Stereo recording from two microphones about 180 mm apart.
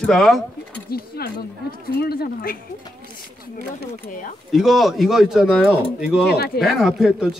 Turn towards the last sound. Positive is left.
turn(degrees=-5)  # may be behind; listen again after turning